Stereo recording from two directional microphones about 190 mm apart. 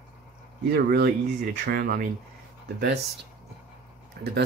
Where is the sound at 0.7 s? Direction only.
60° right (ahead or behind).